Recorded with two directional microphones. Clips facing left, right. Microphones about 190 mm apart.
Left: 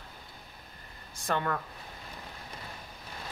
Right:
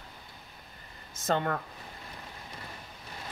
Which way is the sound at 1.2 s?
25° right (ahead or behind).